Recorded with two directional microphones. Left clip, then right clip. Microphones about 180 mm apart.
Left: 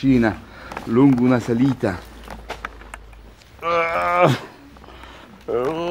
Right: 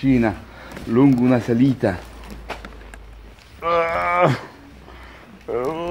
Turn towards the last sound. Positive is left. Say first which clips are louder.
# left 2 dB
turn(degrees=20)  # may be behind; listen again after turning